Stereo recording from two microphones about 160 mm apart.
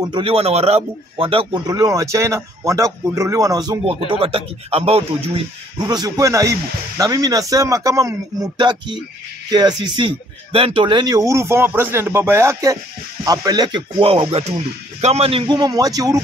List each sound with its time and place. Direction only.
0.0 s speech: 30° right (ahead or behind)
1.7 s speech: 20° right (ahead or behind)
3.8 s speech: 35° right (ahead or behind)
5.8 s speech: 25° right (ahead or behind)